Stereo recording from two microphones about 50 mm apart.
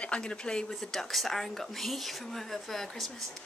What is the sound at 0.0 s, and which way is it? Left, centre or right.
Speech, left.